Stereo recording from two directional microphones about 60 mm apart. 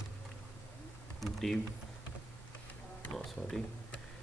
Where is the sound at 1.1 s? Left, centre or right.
Centre.